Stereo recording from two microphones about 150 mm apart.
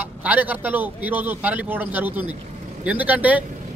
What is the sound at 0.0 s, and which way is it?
A man's voice, 10° right (ahead or behind).